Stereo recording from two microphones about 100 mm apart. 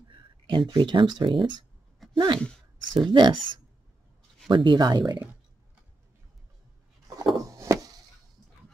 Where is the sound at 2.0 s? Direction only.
Centre (ahead or behind).